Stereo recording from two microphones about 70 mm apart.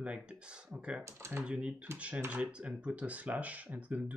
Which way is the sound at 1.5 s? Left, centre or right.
Centre.